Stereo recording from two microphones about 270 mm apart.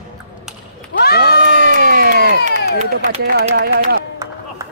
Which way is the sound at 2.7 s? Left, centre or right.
Right.